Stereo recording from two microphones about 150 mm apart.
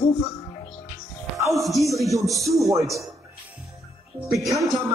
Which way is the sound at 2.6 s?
20° right (ahead or behind).